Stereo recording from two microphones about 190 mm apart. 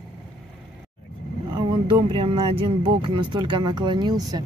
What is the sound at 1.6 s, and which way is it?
Speech, 25° right (ahead or behind).